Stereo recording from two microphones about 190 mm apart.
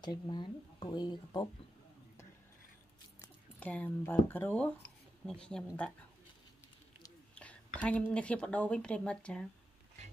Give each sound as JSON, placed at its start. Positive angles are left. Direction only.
{"t": 0.0, "sound": "speech", "side_deg": 25}
{"t": 3.5, "sound": "speech", "side_deg": 10}
{"t": 7.3, "sound": "a woman's voice", "side_deg": 5}